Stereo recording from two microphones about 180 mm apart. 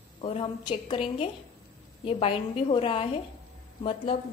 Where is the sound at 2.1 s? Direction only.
30° left (ahead or behind).